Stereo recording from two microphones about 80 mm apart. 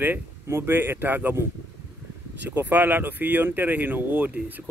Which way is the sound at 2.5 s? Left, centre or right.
Right.